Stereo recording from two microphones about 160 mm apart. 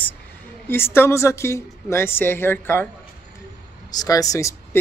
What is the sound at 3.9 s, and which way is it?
Speech, 20° left (ahead or behind).